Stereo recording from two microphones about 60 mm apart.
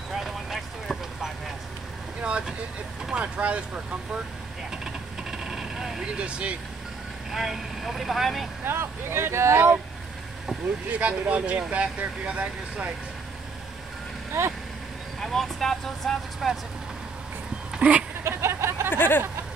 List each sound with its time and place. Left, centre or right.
0.1 s vehicle: centre
2.2 s vehicle: centre
3.1 s speech: centre
5.4 s vehicle: centre
6.0 s speech: centre
7.2 s speech: centre
8.6 s speech: right
10.9 s speech: right
15.1 s speech: centre
17.7 s goat: right
18.2 s a sound: right
18.9 s a sound: left